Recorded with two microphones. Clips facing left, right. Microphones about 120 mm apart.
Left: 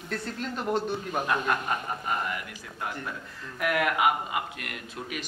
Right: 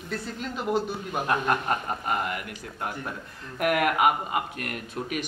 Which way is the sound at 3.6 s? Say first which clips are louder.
Right 3 dB; 50° right (ahead or behind).